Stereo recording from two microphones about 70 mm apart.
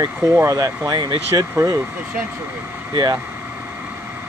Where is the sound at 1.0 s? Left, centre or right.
Right.